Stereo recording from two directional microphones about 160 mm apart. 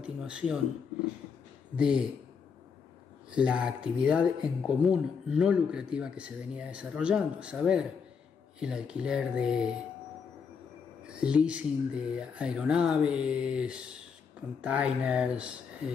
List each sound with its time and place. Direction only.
0.0 s speech: 5° right (ahead or behind)
1.8 s speech: 5° right (ahead or behind)
3.3 s speech: 5° right (ahead or behind)
11.1 s speech: 5° right (ahead or behind)